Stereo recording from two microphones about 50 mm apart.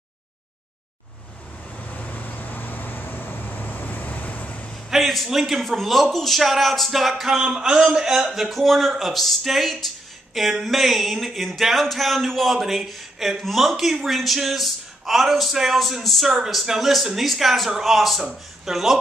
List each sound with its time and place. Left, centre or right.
1.9 s vehicle: left
4.8 s a man's voice: centre
7.3 s a man's voice: centre